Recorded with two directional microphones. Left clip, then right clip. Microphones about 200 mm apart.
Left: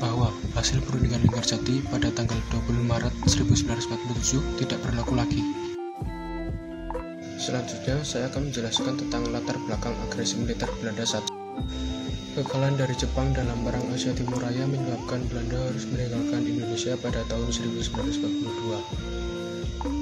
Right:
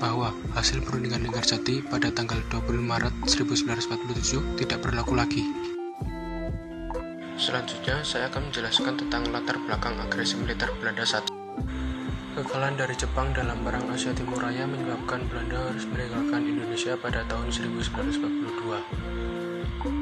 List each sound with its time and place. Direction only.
0.0 s speech: 25° right (ahead or behind)
7.3 s speech: centre (ahead or behind)
12.5 s speech: centre (ahead or behind)
16.3 s speech: 5° left (ahead or behind)